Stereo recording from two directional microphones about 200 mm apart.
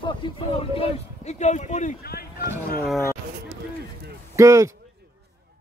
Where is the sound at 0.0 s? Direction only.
25° left (ahead or behind); by 2.2 s 45° left (ahead or behind).